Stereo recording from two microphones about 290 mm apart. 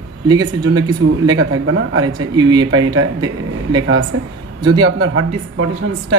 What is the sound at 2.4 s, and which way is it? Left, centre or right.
Speech, centre.